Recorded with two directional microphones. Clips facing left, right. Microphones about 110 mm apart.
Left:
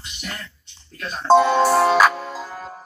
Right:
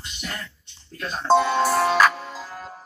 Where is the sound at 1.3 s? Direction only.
20° left (ahead or behind).